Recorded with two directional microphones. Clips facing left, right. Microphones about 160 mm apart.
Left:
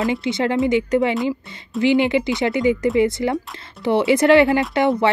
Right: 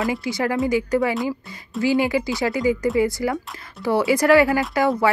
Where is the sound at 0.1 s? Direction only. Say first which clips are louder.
Left 3 dB; 25° left (ahead or behind).